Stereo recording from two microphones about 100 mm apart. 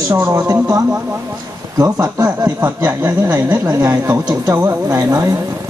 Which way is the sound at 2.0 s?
35° right (ahead or behind).